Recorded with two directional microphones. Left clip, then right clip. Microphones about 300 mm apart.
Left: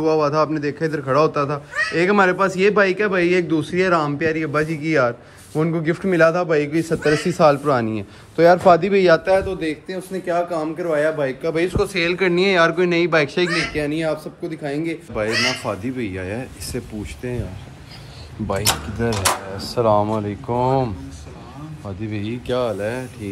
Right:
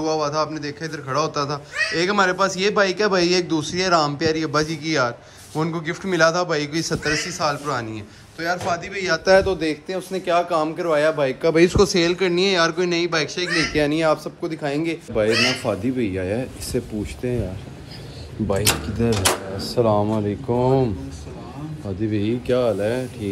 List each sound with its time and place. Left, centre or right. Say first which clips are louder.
0.0 s speech: left 4 dB; centre
9.3 s speech: right 2 dB; right
9.6 s a man's voice: right 1 dB; centre
10.2 s speech: right 2 dB; centre
11.4 s speech: right 7 dB; right
11.8 s speech: right 1 dB; centre
14.5 s a man's voice: right 1 dB; centre
15.1 s speech: right 2 dB; centre
18.6 s speech: left 2 dB; centre
19.5 s speech: left 4 dB; left
22.0 s speech: right 5 dB; centre